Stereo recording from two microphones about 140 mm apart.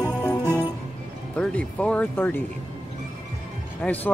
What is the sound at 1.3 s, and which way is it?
Music, 10° left (ahead or behind).